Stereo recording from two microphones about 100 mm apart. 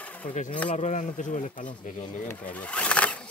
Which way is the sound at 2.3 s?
15° left (ahead or behind).